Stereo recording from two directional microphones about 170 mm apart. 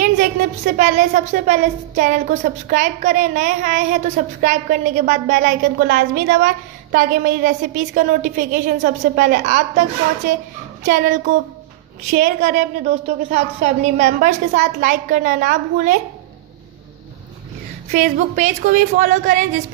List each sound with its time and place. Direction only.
0.0 s a woman's voice: 55° right (ahead or behind)
10.9 s a woman's voice: 50° right (ahead or behind)
17.9 s a woman's voice: 50° right (ahead or behind)